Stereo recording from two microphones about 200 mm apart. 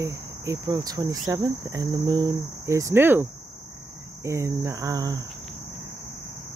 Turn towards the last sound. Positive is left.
turn(degrees=-20)  # may be behind; listen again after turning